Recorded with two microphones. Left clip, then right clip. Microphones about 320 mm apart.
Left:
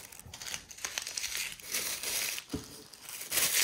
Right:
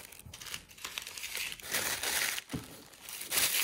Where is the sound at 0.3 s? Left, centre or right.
Centre.